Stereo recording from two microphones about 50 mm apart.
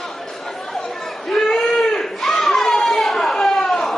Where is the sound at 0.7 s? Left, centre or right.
Centre.